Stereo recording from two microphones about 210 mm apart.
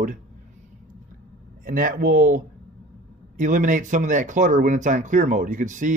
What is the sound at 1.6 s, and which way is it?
Speech, 40° right (ahead or behind).